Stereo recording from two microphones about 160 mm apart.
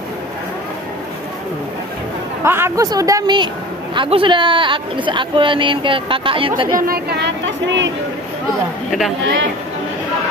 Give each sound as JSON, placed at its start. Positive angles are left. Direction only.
{"t": 2.4, "sound": "speech", "side_deg": -15}
{"t": 6.9, "sound": "speech", "side_deg": -90}